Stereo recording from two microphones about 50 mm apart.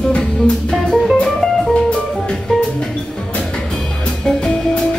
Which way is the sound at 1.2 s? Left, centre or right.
Centre.